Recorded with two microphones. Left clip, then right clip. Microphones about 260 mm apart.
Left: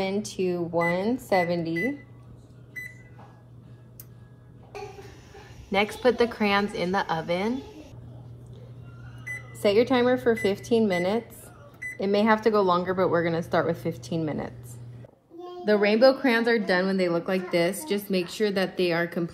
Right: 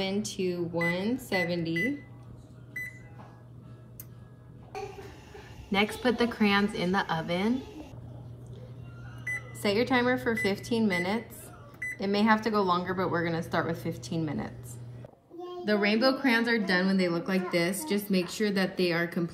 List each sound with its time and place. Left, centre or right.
0.0 s speech: centre
5.7 s speech: centre
9.6 s speech: centre
15.6 s speech: centre